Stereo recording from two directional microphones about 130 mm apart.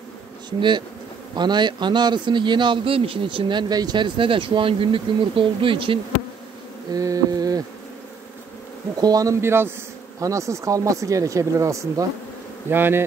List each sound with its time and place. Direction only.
0.5 s a man's voice: 35° right (ahead or behind)
6.9 s speech: 25° right (ahead or behind)
9.0 s speech: 25° right (ahead or behind)
12.6 s bee: 15° right (ahead or behind)